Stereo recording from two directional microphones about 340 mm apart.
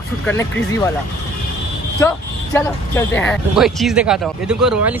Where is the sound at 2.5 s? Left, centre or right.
Centre.